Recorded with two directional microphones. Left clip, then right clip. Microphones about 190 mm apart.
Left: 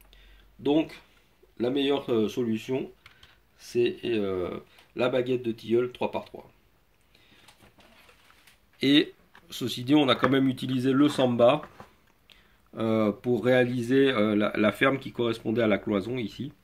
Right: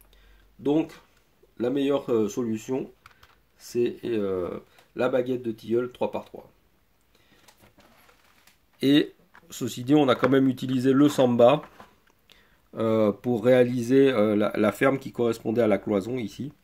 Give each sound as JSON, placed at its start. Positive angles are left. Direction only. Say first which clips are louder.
{"t": 0.6, "sound": "speech", "louder": "even", "side_deg": -40}
{"t": 8.7, "sound": "speech", "louder": "right 1 dB", "side_deg": -45}